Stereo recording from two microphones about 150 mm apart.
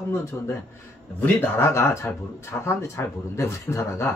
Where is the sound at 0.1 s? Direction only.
15° left (ahead or behind).